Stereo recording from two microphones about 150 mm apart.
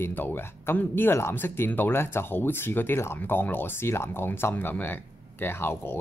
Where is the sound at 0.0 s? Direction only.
15° left (ahead or behind).